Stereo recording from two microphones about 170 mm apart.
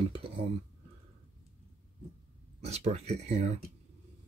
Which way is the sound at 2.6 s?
40° right (ahead or behind).